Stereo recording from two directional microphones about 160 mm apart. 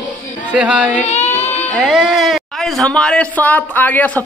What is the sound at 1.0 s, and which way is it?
Child singing, 45° left (ahead or behind).